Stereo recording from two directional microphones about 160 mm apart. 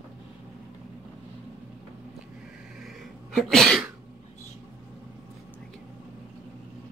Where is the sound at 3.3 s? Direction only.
Centre (ahead or behind).